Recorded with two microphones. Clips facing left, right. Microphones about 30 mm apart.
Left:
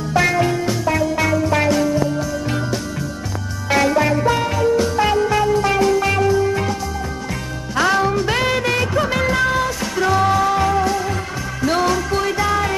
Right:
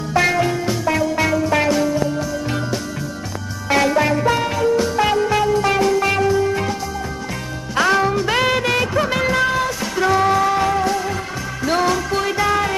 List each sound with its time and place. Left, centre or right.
0.1 s music: centre
8.0 s music: centre